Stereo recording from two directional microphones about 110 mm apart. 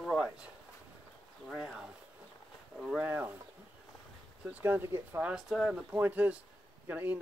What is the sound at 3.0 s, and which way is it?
Speech, 15° right (ahead or behind).